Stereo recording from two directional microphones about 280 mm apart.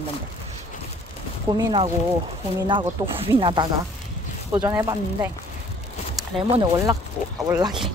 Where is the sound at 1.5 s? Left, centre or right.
Centre.